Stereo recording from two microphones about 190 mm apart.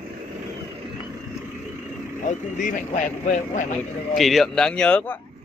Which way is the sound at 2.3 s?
40° left (ahead or behind).